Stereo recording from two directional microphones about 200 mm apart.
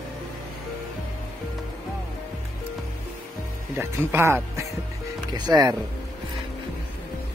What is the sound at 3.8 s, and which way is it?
Speech, 10° right (ahead or behind).